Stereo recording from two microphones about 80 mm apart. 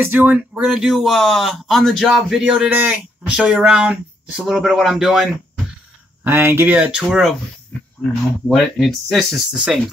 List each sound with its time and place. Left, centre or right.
0.0 s speech: right
0.7 s speech: centre
2.7 s speech: centre
6.2 s speech: right
6.7 s speech: centre
8.5 s speech: centre